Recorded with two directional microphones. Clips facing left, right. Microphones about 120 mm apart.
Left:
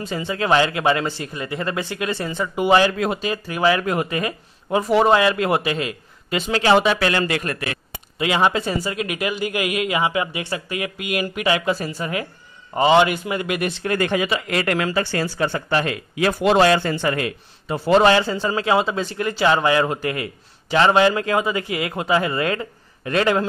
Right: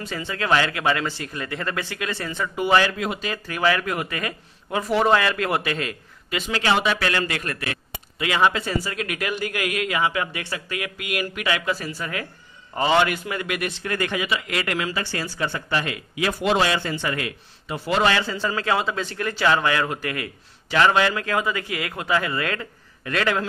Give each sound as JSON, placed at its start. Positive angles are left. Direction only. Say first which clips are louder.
{"t": 0.1, "sound": "speech", "louder": "left 3 dB", "side_deg": 20}
{"t": 1.3, "sound": "speech", "louder": "left 3 dB", "side_deg": 15}
{"t": 6.3, "sound": "a man's voice", "louder": "left 6 dB", "side_deg": 30}
{"t": 18.4, "sound": "speech", "louder": "left 4 dB", "side_deg": 20}